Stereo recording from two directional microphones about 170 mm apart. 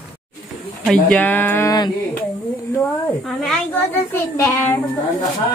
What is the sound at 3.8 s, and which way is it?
A child's voice, 15° left (ahead or behind).